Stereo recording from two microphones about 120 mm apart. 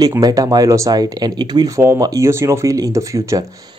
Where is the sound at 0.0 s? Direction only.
30° right (ahead or behind).